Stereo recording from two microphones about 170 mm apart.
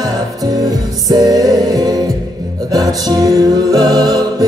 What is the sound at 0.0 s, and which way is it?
Music, 20° right (ahead or behind).